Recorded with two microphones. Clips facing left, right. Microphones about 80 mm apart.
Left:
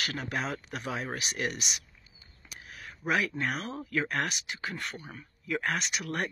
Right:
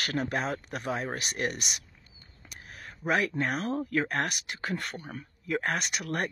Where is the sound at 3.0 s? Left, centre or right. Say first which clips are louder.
Right 2 dB; centre.